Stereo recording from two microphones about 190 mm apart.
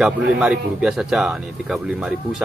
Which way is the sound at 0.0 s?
5° right (ahead or behind).